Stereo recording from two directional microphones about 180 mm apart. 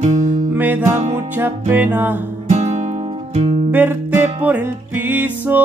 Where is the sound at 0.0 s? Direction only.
45° right (ahead or behind).